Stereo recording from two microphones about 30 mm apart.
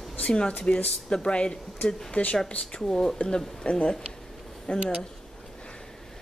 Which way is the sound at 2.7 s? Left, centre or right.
Left.